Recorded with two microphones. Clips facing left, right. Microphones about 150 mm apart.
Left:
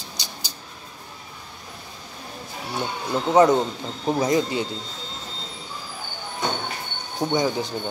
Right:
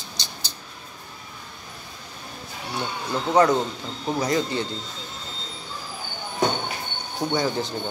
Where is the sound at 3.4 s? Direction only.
20° left (ahead or behind).